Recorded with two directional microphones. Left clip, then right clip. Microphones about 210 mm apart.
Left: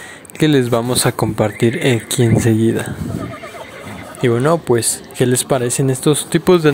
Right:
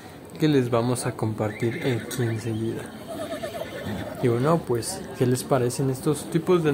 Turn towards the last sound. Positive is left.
turn(degrees=45)  # may be behind; listen again after turning